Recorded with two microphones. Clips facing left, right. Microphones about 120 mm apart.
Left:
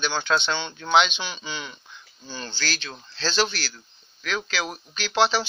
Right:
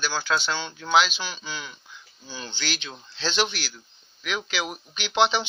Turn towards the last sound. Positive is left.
turn(degrees=-20)  # may be behind; listen again after turning